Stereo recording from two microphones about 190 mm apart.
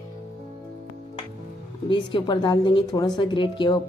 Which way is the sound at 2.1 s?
25° left (ahead or behind).